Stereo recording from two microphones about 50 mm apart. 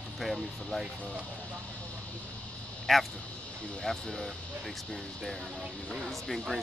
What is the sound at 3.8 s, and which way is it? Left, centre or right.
Speech, centre.